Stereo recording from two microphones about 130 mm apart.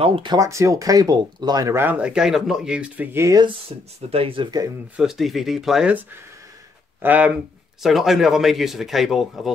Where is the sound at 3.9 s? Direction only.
50° right (ahead or behind); by 4.7 s 35° right (ahead or behind).